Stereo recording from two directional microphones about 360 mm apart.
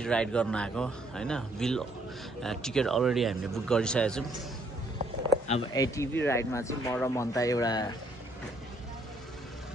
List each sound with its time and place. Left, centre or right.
0.0 s speech: centre
5.5 s speech: centre